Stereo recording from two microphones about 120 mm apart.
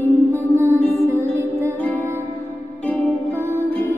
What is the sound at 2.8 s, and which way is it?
Music, 15° left (ahead or behind).